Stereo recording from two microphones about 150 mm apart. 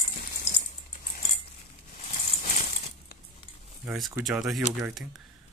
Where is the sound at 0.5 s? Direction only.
45° left (ahead or behind).